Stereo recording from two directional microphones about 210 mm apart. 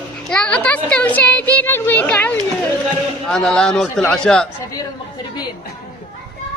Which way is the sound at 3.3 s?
5° left (ahead or behind).